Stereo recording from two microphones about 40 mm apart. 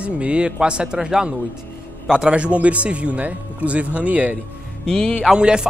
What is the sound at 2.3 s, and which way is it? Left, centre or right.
Speech, right.